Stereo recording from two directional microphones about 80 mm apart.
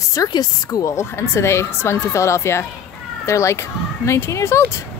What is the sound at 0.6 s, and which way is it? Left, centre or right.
Speech, left.